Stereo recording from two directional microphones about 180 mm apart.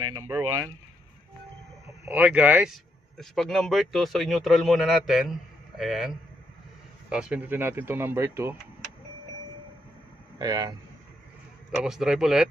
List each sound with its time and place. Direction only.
0.1 s speech: 15° right (ahead or behind)
2.0 s speech: 10° right (ahead or behind)
10.4 s speech: 20° right (ahead or behind)
11.8 s speech: 5° right (ahead or behind)